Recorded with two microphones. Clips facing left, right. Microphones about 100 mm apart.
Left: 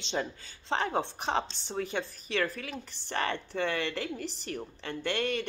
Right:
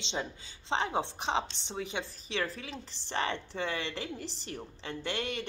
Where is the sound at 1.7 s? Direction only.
50° left (ahead or behind).